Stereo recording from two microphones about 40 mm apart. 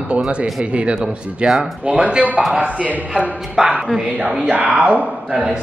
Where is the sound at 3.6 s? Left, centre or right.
Centre.